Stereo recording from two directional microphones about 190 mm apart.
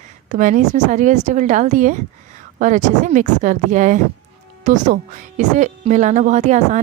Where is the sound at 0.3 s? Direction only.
40° right (ahead or behind).